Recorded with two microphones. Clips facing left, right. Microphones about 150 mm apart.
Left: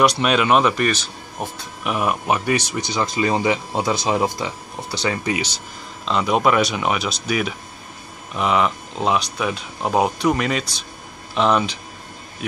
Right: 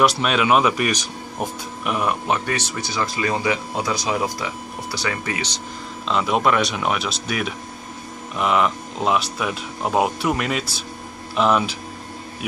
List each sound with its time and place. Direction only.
0.0 s speech: centre (ahead or behind)
1.9 s speech: 5° left (ahead or behind)
6.0 s speech: centre (ahead or behind)